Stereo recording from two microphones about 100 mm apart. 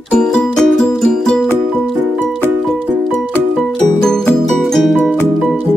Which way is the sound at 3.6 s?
Centre (ahead or behind).